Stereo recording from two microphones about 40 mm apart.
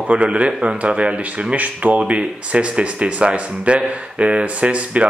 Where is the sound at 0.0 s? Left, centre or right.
Right.